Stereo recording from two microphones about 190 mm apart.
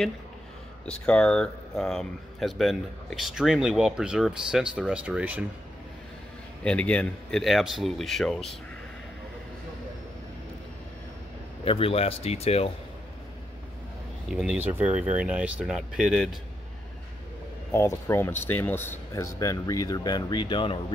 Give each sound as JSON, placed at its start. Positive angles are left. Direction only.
{"t": 0.8, "sound": "speech", "side_deg": 5}
{"t": 6.6, "sound": "speech", "side_deg": 5}
{"t": 11.6, "sound": "speech", "side_deg": 30}
{"t": 14.3, "sound": "speech", "side_deg": 0}
{"t": 17.6, "sound": "speech", "side_deg": 15}